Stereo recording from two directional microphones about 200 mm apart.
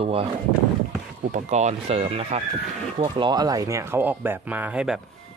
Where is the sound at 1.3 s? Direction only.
35° right (ahead or behind).